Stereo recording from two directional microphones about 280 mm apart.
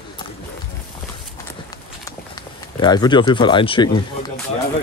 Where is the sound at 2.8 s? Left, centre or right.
Centre.